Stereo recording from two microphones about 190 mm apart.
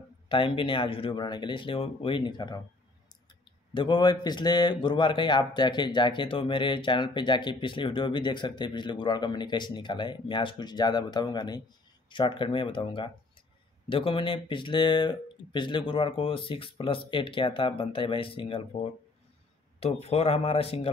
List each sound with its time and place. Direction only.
0.3 s a man's voice: 25° left (ahead or behind)
3.7 s a man's voice: 25° left (ahead or behind)